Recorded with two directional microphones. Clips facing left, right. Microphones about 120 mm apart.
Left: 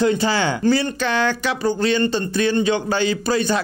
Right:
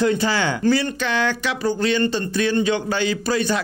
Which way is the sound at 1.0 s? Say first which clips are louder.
Left 2 dB; 40° left (ahead or behind).